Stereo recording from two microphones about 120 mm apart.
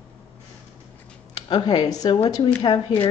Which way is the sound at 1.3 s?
35° left (ahead or behind).